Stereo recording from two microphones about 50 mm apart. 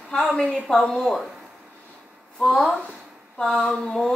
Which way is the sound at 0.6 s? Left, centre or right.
Centre.